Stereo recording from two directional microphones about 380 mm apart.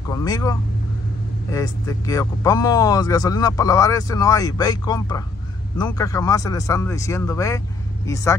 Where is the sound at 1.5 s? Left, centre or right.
Centre.